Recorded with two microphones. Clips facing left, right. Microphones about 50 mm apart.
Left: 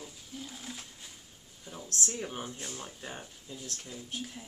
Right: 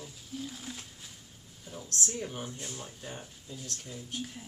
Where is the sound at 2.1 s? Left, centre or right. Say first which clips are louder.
Even; left.